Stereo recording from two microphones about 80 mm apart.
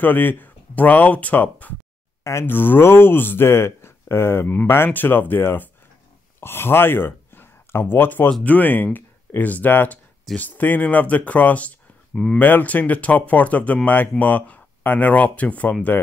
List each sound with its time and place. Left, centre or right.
0.0 s speech: left
12.4 s speech: left